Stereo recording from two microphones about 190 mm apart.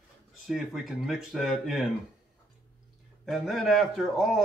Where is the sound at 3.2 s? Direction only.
Centre (ahead or behind).